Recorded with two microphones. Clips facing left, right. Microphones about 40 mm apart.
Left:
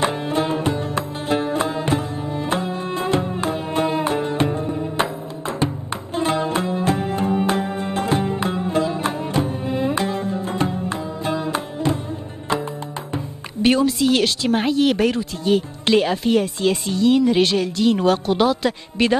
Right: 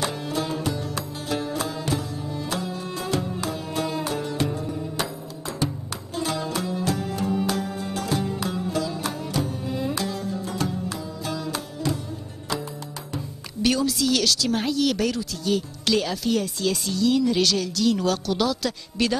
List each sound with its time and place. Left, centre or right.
0.0 s music: left
6.1 s music: left
13.1 s speech: left